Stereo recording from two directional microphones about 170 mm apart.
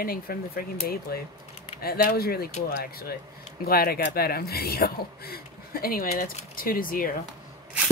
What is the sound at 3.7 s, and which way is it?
Speech, 65° left (ahead or behind).